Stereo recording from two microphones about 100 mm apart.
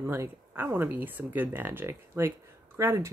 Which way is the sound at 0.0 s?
20° right (ahead or behind).